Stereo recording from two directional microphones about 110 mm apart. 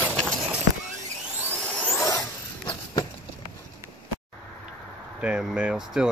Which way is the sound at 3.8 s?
25° right (ahead or behind).